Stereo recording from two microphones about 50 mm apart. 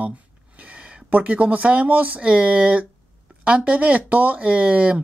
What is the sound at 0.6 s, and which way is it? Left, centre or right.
Speech, right.